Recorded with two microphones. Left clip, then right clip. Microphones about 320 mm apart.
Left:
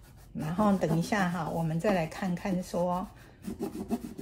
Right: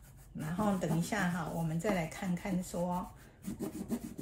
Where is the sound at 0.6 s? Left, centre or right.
Left.